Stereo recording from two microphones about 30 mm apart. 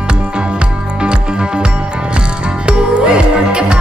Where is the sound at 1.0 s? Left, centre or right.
Right.